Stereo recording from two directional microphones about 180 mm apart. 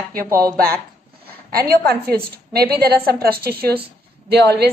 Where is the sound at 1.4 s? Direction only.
60° right (ahead or behind).